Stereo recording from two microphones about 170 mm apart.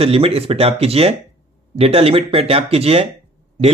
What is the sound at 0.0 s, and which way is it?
Speech, 35° right (ahead or behind).